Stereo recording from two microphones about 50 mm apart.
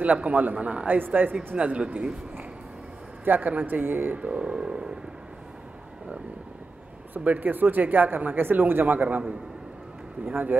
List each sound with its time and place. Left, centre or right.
0.0 s a man's voice: right
0.8 s speech: right
1.6 s a man's voice: right
3.3 s speech: right
4.2 s a man's voice: right
7.2 s speech: right
10.2 s speech: right